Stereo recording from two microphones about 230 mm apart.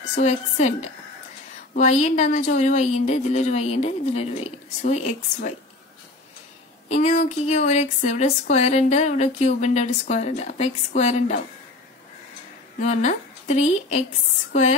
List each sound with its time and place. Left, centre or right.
0.1 s a woman's voice: left
6.9 s speech: left
12.8 s speech: left